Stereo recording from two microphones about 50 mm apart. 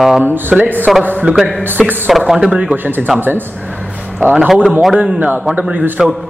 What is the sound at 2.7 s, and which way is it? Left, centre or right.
Speech, right.